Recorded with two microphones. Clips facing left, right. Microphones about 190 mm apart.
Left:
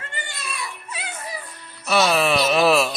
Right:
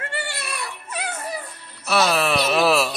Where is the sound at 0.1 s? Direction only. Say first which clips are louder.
Right 4 dB; 70° right (ahead or behind).